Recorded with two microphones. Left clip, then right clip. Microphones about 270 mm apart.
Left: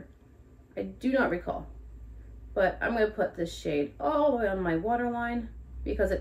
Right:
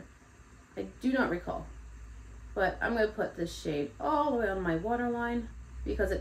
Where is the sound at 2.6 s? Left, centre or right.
Centre.